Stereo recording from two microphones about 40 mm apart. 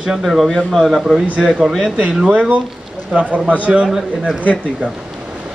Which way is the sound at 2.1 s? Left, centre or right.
Right.